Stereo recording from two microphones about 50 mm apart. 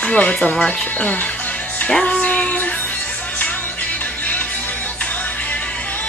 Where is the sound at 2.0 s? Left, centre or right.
Left.